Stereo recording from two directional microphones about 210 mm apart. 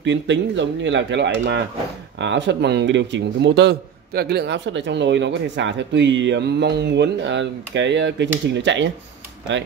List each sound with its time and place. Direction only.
0.0 s speech: 60° right (ahead or behind)